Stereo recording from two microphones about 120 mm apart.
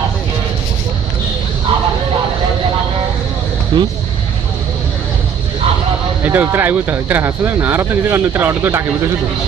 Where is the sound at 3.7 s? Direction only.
40° right (ahead or behind).